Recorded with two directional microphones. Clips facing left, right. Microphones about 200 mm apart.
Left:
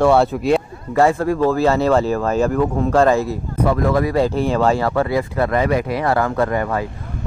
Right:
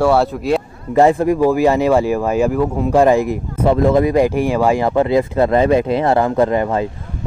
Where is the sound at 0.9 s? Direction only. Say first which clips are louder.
Right 3 dB; 20° right (ahead or behind).